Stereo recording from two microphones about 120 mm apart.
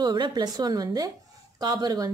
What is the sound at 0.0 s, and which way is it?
A woman's voice, 35° right (ahead or behind).